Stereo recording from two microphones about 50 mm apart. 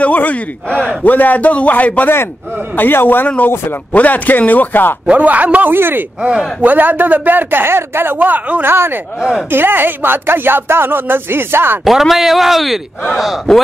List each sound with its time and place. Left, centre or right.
0.0 s a man's voice: left
2.7 s speech: left
3.9 s a man's voice: left
5.0 s a man's voice: right
5.7 s speech: right
7.6 s speech: right
8.6 s speech: right
11.8 s a man's voice: centre